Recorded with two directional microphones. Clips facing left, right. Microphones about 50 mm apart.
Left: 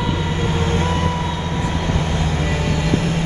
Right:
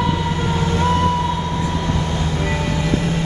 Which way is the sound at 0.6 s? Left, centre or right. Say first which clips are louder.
Right 3 dB; left.